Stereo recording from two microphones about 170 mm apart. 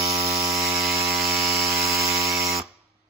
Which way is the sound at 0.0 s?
35° right (ahead or behind).